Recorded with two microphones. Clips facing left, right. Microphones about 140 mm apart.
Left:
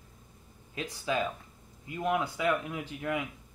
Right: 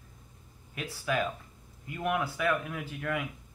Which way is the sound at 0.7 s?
20° left (ahead or behind).